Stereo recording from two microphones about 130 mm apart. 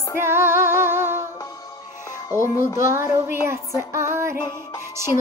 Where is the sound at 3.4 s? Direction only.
20° right (ahead or behind).